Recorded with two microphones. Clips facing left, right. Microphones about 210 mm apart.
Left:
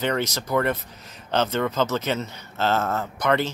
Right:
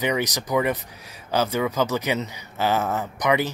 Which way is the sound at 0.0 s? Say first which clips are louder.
Right 1 dB; 15° right (ahead or behind).